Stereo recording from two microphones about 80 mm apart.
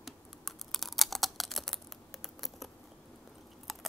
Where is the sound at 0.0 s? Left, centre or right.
Centre.